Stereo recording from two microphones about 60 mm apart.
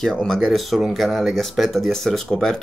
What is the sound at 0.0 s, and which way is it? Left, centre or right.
Speech, centre.